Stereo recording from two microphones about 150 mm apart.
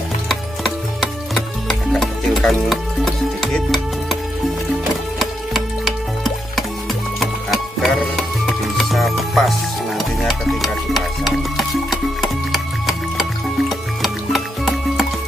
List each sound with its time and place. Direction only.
1.3 s music: centre (ahead or behind)
5.2 s music: centre (ahead or behind)